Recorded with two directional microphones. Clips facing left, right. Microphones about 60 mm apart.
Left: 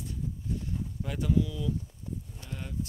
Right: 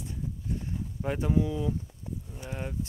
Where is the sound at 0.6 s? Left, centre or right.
Right.